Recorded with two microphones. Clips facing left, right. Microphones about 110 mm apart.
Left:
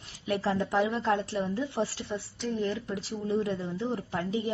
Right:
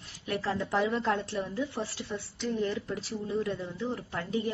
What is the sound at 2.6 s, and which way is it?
Speech, centre (ahead or behind).